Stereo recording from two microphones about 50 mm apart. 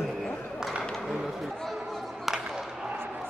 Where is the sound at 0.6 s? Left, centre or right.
Centre.